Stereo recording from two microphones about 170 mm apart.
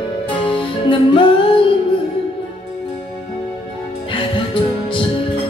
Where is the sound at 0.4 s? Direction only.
30° left (ahead or behind).